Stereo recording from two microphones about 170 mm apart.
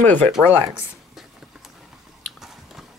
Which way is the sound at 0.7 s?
5° right (ahead or behind).